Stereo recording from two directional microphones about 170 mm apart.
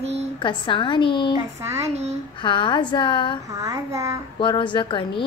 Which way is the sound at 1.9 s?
40° right (ahead or behind).